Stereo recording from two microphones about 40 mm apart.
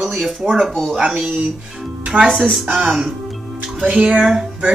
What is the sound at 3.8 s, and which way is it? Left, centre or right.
Speech, centre.